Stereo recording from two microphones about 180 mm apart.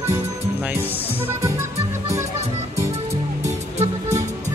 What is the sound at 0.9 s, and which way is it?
Speech, 10° right (ahead or behind).